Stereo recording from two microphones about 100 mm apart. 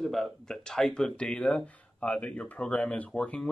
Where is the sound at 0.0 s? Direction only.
Centre (ahead or behind).